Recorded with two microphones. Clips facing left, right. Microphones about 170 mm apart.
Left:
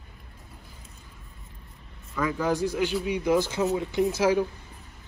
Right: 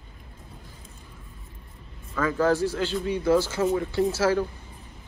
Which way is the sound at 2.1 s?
15° left (ahead or behind).